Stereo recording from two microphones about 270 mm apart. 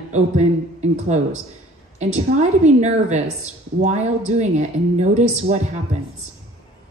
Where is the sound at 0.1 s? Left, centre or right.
Right.